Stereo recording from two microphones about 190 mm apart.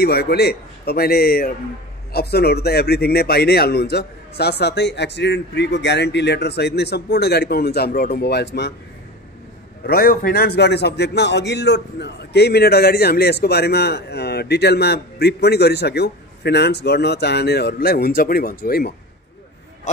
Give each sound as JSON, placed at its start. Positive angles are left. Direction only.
{"t": 0.0, "sound": "a man's voice", "side_deg": 55}
{"t": 9.8, "sound": "a man's voice", "side_deg": 50}